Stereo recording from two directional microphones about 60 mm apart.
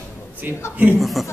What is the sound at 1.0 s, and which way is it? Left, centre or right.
Speech, centre.